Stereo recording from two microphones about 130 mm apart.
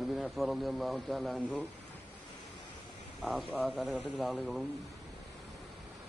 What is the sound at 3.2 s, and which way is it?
A man's voice, centre (ahead or behind).